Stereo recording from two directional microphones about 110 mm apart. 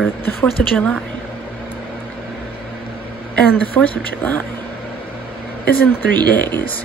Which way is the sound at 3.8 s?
20° left (ahead or behind).